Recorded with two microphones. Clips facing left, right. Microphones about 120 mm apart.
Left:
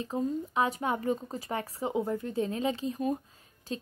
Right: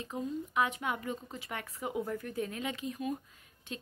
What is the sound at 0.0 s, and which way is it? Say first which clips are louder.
Speech: left 6 dB; 35° left (ahead or behind).